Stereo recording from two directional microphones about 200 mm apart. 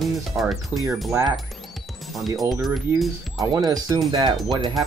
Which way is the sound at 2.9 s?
10° right (ahead or behind).